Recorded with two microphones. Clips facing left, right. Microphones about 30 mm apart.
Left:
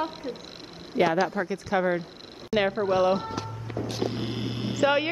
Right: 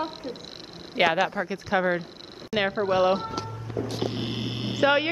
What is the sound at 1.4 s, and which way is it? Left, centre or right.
Speech, right.